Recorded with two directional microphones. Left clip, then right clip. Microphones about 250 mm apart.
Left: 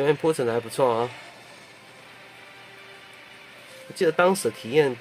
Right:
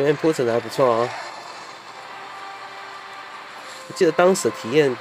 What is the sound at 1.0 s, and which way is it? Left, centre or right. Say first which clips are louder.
Speech: right 5 dB; centre.